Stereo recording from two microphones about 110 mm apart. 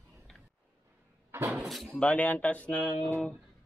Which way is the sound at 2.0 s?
15° left (ahead or behind).